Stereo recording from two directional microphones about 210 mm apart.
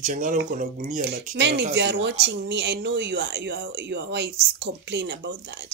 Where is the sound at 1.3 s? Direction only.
55° right (ahead or behind).